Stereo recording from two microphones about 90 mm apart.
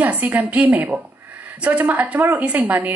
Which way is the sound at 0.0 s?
15° right (ahead or behind).